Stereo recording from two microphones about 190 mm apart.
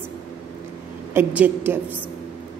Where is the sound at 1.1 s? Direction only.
10° right (ahead or behind).